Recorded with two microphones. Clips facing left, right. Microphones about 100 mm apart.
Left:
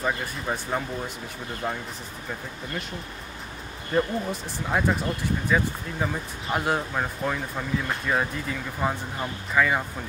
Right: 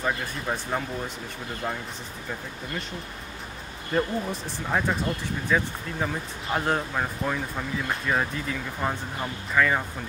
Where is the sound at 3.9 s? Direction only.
5° left (ahead or behind).